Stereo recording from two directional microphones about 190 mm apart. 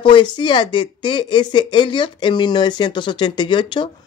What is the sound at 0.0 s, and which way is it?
Speech, 25° left (ahead or behind).